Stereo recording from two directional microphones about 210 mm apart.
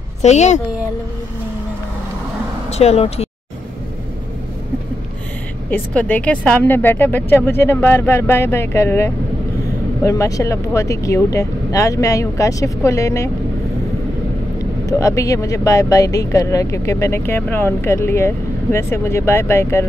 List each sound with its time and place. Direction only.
0.2 s speech: 35° left (ahead or behind)
2.7 s speech: 30° left (ahead or behind)
5.7 s speech: 10° left (ahead or behind)
14.9 s speech: 15° left (ahead or behind)